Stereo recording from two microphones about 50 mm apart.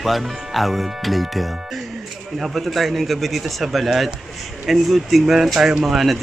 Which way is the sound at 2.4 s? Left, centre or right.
Centre.